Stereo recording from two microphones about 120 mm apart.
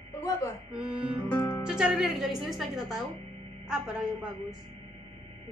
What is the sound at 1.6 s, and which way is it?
Music, 5° right (ahead or behind).